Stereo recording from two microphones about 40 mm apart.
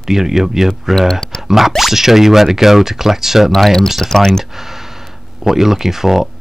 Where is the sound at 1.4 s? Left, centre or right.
Centre.